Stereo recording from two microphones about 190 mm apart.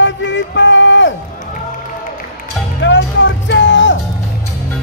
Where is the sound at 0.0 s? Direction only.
70° left (ahead or behind).